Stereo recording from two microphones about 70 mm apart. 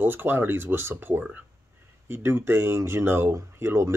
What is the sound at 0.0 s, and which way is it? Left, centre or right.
Speech, right.